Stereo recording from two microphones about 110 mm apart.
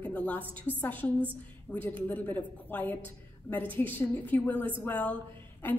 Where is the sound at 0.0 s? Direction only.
15° left (ahead or behind).